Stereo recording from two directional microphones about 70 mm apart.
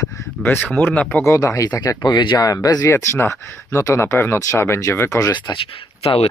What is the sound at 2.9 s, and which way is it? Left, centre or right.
Speech, left.